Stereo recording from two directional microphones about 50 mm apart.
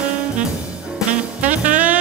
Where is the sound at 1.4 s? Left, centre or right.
Right.